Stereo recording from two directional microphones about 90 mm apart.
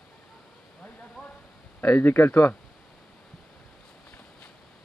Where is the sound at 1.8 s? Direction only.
20° left (ahead or behind).